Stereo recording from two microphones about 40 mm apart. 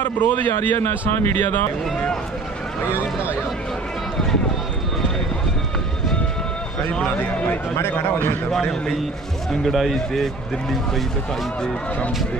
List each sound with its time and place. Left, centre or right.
0.0 s a man's voice: left
0.7 s speech: left
1.3 s a man's voice: left
7.8 s a man's voice: left
9.7 s speech: centre